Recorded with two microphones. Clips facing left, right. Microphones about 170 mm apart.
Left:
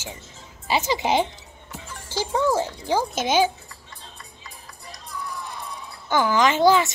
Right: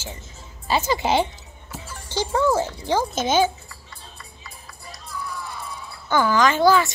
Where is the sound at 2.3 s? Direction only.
15° left (ahead or behind).